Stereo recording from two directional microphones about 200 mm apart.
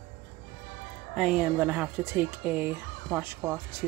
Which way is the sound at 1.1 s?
5° right (ahead or behind).